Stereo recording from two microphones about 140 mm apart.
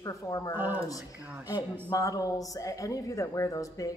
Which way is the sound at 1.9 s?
25° left (ahead or behind).